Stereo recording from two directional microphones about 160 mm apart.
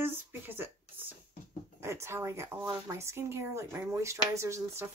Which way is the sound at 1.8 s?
15° right (ahead or behind).